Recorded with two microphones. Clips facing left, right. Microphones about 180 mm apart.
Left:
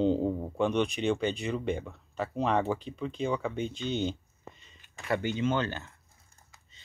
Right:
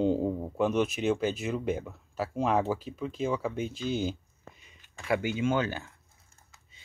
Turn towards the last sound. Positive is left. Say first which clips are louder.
# right 1 dB
turn(degrees=-10)  # may be behind; listen again after turning